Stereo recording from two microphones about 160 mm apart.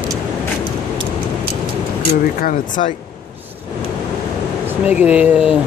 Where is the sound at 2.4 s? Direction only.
55° left (ahead or behind).